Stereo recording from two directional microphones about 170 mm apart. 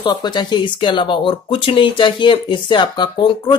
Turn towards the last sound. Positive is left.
turn(degrees=25)  # may be behind; listen again after turning